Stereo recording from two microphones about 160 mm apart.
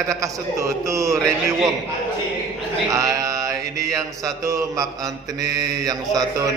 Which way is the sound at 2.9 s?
20° right (ahead or behind).